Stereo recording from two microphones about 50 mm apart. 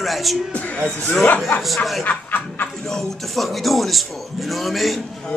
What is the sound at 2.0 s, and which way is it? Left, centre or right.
Speech, left.